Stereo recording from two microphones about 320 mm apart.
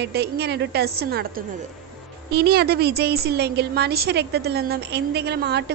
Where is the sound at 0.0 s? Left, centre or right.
Right.